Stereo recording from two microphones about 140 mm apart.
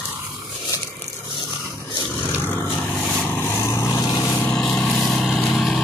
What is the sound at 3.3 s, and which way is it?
Vehicle, 15° left (ahead or behind).